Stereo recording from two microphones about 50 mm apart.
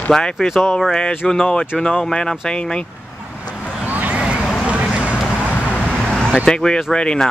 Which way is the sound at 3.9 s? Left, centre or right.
Right.